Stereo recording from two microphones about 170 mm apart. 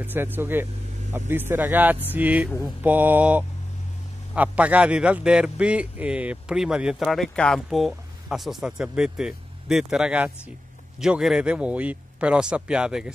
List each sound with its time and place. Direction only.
0.0 s a man's voice: 10° right (ahead or behind)